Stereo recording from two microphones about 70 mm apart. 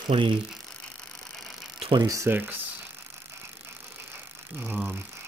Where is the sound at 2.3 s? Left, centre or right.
Right.